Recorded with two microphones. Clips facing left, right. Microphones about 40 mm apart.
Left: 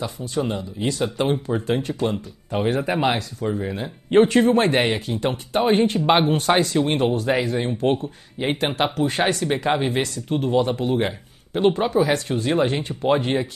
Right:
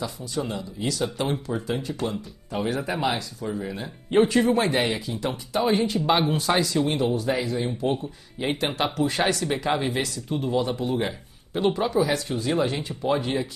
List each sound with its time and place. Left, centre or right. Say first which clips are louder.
0.0 s speech: left 4 dB; left
1.5 s speech: left 5 dB; left
8.4 s speech: left 3 dB; left
10.3 s speech: left 5 dB; left